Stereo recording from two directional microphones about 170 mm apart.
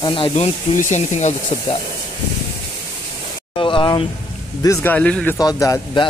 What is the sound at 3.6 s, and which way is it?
Speech, 30° left (ahead or behind).